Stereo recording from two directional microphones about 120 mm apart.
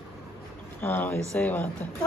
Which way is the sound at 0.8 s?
15° left (ahead or behind).